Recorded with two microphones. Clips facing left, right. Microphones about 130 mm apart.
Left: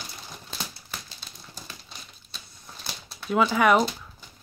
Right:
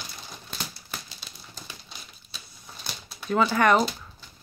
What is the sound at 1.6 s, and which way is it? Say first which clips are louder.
Crumpling: even; 5° right (ahead or behind).